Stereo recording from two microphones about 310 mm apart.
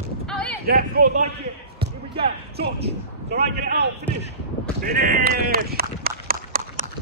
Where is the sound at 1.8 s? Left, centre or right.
Centre.